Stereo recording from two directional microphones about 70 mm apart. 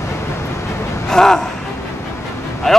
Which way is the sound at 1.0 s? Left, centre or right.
Centre.